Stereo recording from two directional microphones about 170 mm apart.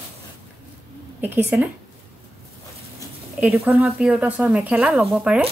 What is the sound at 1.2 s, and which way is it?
Speech, 10° right (ahead or behind).